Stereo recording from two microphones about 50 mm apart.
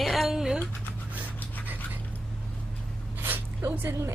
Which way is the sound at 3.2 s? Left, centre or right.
Right.